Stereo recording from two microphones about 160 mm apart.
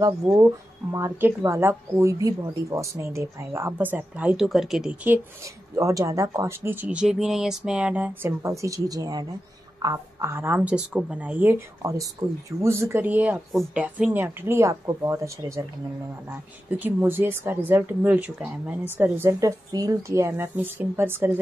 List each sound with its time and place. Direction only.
0.3 s speech: 5° right (ahead or behind)
0.9 s speech: 20° right (ahead or behind)
5.8 s speech: 20° right (ahead or behind)